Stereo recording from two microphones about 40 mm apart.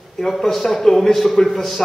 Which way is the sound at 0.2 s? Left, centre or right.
Centre.